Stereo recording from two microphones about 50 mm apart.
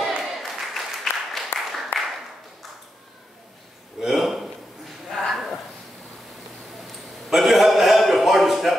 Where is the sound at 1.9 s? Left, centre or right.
Left.